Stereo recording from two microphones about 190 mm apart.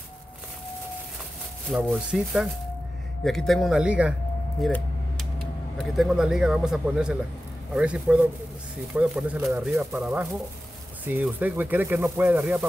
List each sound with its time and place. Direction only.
1.7 s speech: 5° right (ahead or behind)
4.6 s a sound: centre (ahead or behind)
5.8 s speech: centre (ahead or behind)
11.1 s speech: 10° right (ahead or behind)